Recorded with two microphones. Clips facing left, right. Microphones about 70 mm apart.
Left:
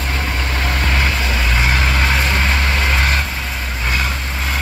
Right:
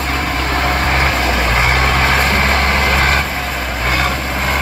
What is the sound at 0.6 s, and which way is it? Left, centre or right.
Vehicle, right.